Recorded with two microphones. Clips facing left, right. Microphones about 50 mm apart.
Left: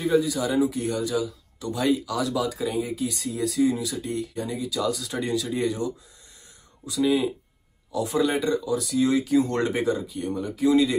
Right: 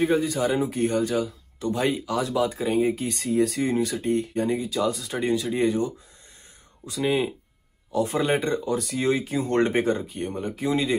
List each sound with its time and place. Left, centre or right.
0.0 s speech: right